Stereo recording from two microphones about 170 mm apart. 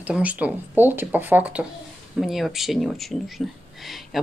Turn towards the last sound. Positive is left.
turn(degrees=0)  # may be behind; listen again after turning